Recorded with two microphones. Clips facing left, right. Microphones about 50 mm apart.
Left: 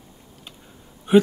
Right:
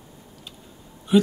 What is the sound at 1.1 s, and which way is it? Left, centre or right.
Speech, left.